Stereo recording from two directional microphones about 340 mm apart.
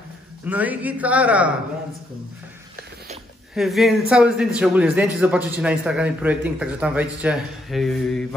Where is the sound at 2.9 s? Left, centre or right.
Centre.